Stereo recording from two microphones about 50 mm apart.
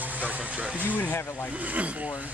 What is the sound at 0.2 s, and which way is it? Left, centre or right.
Music, right.